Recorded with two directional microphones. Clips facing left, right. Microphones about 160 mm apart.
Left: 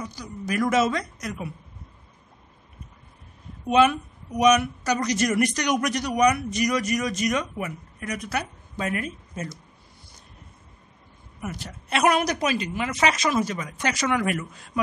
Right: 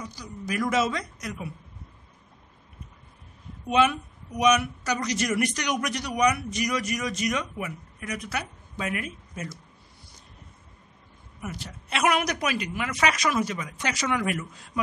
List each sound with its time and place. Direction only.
0.2 s a man's voice: 50° left (ahead or behind)
4.4 s a man's voice: 40° left (ahead or behind)
11.4 s a woman's voice: 50° left (ahead or behind)